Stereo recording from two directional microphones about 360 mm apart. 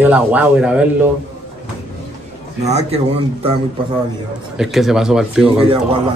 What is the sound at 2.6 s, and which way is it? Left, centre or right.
Speech, centre.